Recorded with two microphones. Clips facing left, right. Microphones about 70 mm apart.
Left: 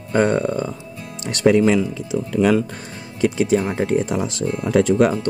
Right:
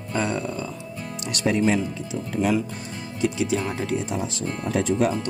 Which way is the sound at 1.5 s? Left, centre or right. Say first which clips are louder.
Left 6 dB; left.